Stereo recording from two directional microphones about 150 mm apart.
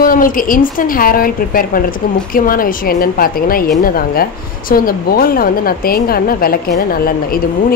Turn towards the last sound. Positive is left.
turn(degrees=75)  # may be behind; listen again after turning